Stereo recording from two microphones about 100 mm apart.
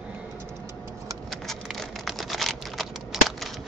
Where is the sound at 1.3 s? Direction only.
Centre (ahead or behind).